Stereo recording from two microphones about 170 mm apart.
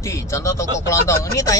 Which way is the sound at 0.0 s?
15° left (ahead or behind).